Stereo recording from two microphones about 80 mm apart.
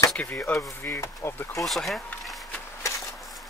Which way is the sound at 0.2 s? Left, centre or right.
Left.